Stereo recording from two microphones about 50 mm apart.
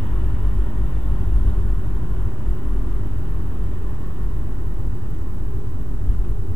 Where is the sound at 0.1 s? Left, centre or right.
Centre.